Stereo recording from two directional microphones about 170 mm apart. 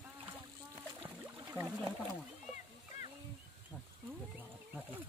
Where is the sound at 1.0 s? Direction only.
15° right (ahead or behind).